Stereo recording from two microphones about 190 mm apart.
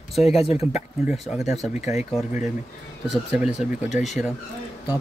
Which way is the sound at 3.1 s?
5° right (ahead or behind).